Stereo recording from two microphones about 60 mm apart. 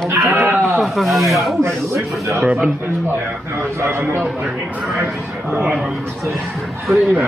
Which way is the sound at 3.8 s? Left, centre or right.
Right.